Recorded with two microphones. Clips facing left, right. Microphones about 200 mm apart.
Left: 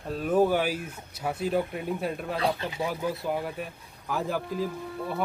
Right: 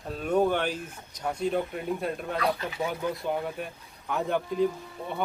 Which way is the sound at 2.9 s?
5° left (ahead or behind).